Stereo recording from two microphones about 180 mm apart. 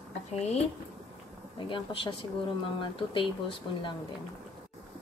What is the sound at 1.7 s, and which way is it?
Speech, 30° left (ahead or behind).